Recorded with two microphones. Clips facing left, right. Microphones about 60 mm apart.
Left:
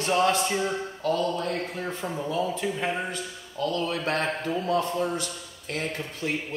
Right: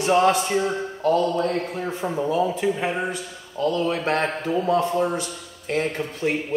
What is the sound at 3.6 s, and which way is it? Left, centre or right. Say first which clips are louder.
A man's voice: right 5 dB; right.